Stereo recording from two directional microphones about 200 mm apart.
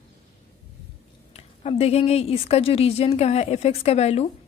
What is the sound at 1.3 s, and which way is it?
A woman's voice, 30° left (ahead or behind).